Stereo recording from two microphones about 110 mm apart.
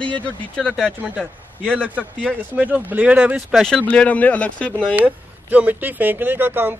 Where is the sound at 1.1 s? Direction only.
15° right (ahead or behind).